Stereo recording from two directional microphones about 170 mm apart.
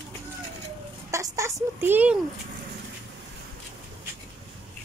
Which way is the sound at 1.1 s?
20° right (ahead or behind).